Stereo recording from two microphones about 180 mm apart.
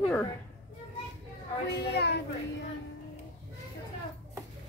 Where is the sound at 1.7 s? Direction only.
65° left (ahead or behind).